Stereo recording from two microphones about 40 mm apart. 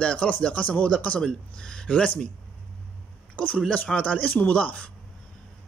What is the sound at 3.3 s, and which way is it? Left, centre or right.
Speech, left.